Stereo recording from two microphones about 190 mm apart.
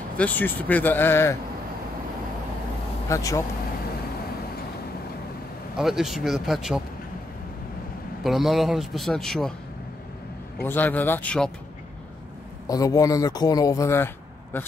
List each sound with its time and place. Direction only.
0.2 s speech: 10° left (ahead or behind)
3.1 s speech: 15° left (ahead or behind)
5.8 s a man's voice: centre (ahead or behind)
8.2 s a man's voice: centre (ahead or behind)
10.6 s speech: 10° left (ahead or behind)
12.6 s speech: 20° left (ahead or behind)